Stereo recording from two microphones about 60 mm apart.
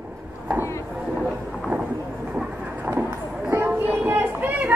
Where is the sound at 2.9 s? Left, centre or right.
Right.